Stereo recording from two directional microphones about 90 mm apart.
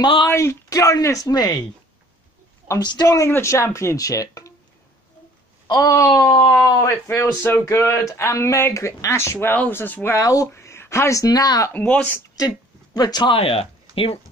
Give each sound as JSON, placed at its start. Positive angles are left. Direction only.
{"t": 0.3, "sound": "speech", "side_deg": 30}
{"t": 2.8, "sound": "speech", "side_deg": 55}
{"t": 3.1, "sound": "speech", "side_deg": 30}
{"t": 5.7, "sound": "speech", "side_deg": 40}
{"t": 7.1, "sound": "speech", "side_deg": 30}
{"t": 10.1, "sound": "speech", "side_deg": 40}
{"t": 11.7, "sound": "speech", "side_deg": 15}
{"t": 12.4, "sound": "speech", "side_deg": 50}
{"t": 13.3, "sound": "speech", "side_deg": 90}